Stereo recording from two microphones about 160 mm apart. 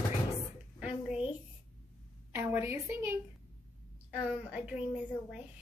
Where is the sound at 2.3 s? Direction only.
15° right (ahead or behind).